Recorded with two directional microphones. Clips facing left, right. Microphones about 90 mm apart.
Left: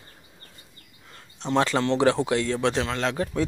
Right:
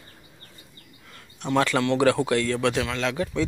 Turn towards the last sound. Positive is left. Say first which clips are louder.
# even
turn(degrees=35)  # may be behind; listen again after turning